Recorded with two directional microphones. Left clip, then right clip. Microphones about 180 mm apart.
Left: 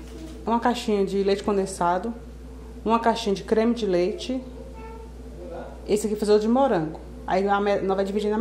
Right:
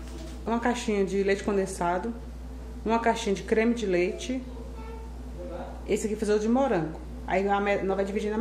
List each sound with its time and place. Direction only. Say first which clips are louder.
0.5 s a woman's voice: left 5 dB; 20° left (ahead or behind)
5.9 s a woman's voice: left 5 dB; 20° left (ahead or behind)